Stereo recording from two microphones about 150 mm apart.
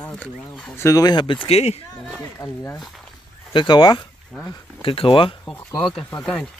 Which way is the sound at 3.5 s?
30° left (ahead or behind).